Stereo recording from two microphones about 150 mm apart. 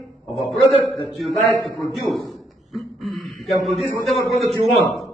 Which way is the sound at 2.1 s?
Centre (ahead or behind).